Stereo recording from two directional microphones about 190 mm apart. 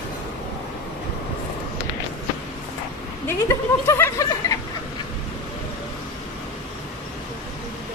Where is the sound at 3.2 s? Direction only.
10° left (ahead or behind).